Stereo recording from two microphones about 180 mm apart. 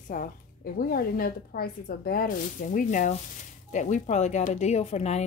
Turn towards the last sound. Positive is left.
turn(degrees=35)  # may be behind; listen again after turning